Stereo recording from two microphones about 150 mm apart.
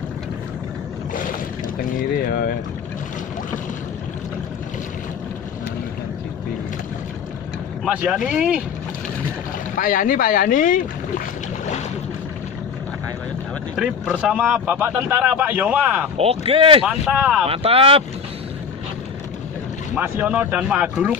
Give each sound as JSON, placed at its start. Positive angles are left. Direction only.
{"t": 7.8, "sound": "speech", "side_deg": -5}
{"t": 9.8, "sound": "speech", "side_deg": 65}
{"t": 13.7, "sound": "speech", "side_deg": -10}
{"t": 16.2, "sound": "speech", "side_deg": -40}
{"t": 16.8, "sound": "speech", "side_deg": -5}
{"t": 17.5, "sound": "speech", "side_deg": -40}
{"t": 20.0, "sound": "speech", "side_deg": -10}